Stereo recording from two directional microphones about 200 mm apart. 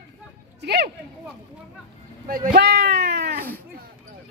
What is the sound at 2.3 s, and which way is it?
Speech, 50° right (ahead or behind).